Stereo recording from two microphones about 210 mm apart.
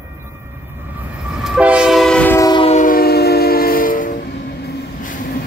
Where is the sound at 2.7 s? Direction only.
40° left (ahead or behind).